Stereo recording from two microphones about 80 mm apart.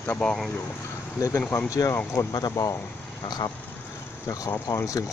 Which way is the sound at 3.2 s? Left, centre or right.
Left.